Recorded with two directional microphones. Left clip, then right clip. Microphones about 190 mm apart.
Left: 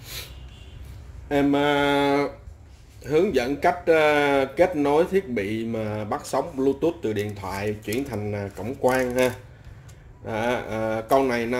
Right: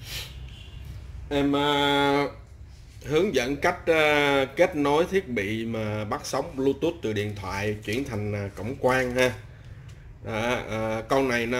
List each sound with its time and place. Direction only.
1.3 s speech: 25° left (ahead or behind); by 11.5 s 5° left (ahead or behind)